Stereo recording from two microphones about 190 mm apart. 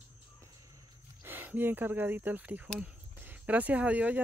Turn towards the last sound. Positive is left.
turn(degrees=-5)  # may be behind; listen again after turning